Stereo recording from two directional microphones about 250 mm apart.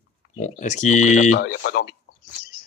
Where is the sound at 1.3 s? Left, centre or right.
Left.